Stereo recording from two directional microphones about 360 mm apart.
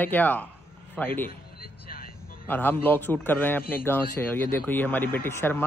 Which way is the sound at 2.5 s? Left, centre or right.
Centre.